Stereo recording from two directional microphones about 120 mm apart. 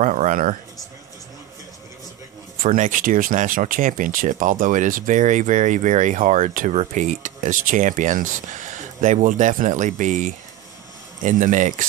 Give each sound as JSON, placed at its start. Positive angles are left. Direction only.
{"t": 0.0, "sound": "speech", "side_deg": -90}
{"t": 2.6, "sound": "speech", "side_deg": -90}